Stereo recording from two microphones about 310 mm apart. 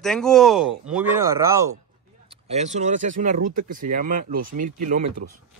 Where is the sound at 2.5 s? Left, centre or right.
Right.